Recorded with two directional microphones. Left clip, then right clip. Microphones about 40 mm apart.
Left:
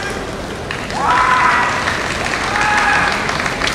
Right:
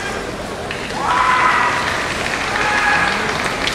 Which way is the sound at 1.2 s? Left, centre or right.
Left.